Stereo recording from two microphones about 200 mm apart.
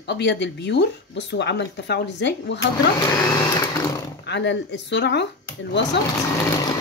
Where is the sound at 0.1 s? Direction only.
60° left (ahead or behind).